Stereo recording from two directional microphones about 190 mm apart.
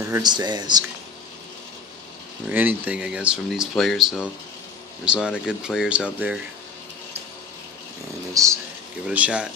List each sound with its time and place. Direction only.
0.0 s speech: 20° right (ahead or behind)
2.5 s speech: 10° right (ahead or behind)
8.3 s speech: 15° right (ahead or behind)
9.0 s speech: 5° right (ahead or behind)